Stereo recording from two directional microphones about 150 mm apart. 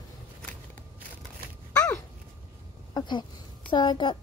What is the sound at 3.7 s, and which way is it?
Speech, 30° left (ahead or behind).